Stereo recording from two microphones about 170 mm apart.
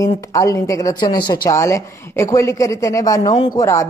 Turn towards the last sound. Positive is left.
turn(degrees=20)  # may be behind; listen again after turning